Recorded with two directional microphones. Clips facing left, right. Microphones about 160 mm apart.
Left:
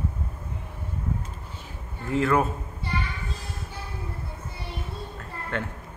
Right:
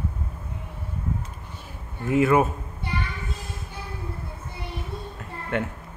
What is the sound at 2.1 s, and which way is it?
Speech, 20° right (ahead or behind).